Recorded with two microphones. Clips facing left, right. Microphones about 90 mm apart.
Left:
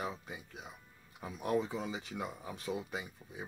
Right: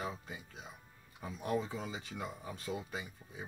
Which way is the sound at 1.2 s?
10° left (ahead or behind).